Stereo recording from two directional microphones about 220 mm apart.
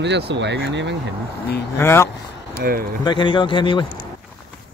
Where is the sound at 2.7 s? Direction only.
40° right (ahead or behind).